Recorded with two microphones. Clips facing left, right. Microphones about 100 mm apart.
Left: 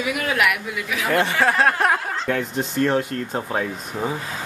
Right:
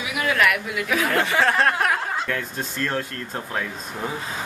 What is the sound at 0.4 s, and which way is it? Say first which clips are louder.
Speech: even; 5° left (ahead or behind).